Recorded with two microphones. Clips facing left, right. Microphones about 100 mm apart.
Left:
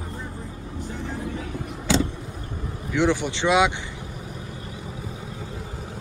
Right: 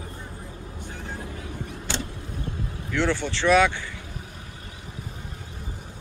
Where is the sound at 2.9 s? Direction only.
15° left (ahead or behind).